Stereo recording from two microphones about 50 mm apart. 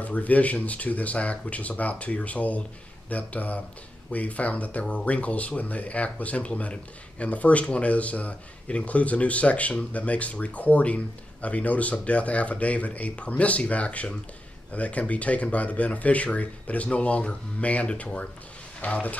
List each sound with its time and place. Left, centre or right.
0.0 s speech: left